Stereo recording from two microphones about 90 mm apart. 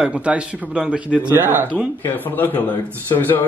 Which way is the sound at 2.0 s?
25° left (ahead or behind).